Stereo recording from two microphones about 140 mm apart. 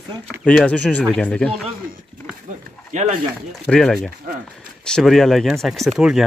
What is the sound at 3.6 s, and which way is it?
Speech, 5° left (ahead or behind).